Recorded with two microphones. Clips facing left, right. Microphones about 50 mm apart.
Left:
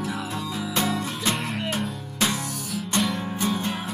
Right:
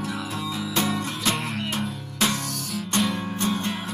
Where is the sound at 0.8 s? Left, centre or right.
Centre.